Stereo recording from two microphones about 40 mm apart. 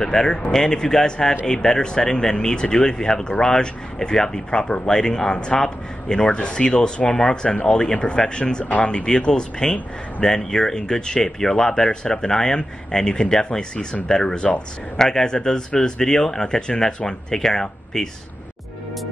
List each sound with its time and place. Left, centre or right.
0.0 s speech: left